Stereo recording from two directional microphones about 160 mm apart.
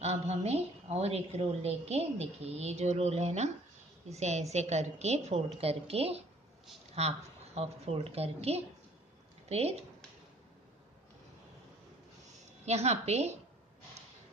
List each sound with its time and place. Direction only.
0.0 s a woman's voice: 40° right (ahead or behind)
12.6 s a woman's voice: 40° right (ahead or behind)